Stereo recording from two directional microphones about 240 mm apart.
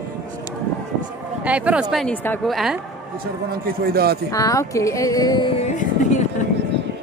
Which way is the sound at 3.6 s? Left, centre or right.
Right.